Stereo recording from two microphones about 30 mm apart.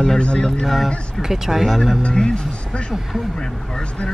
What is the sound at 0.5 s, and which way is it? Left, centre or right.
Speech, centre.